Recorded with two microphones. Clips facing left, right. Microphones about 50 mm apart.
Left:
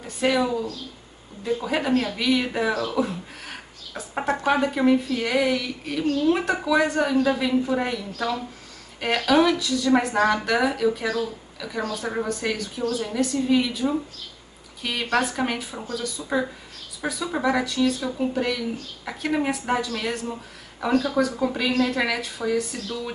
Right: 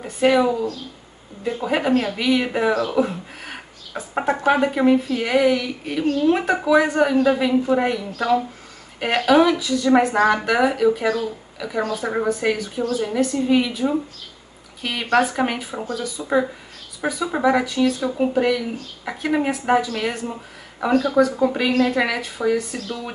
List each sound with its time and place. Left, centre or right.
0.0 s speech: centre
4.1 s a sound: centre
4.5 s speech: centre
17.0 s speech: right
17.4 s speech: centre